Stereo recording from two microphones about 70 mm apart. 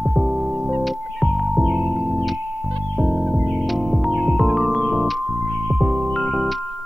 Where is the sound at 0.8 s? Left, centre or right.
Centre.